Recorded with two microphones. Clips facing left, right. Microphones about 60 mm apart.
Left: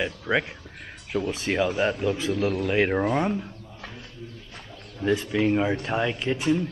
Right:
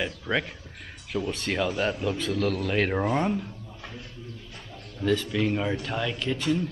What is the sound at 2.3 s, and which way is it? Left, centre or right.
Speech, left.